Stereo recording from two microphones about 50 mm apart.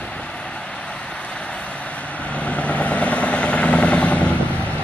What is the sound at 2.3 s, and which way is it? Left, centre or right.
Vehicle, left.